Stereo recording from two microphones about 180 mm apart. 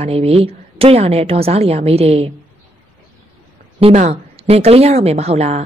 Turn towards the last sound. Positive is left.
turn(degrees=-35)  # may be behind; listen again after turning